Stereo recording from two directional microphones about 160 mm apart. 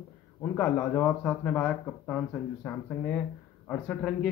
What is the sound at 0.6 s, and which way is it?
A man's voice, 10° left (ahead or behind).